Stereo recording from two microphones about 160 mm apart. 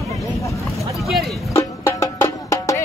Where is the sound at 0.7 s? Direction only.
Centre (ahead or behind).